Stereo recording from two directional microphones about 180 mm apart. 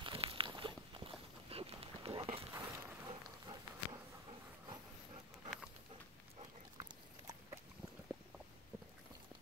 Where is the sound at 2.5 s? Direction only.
15° right (ahead or behind).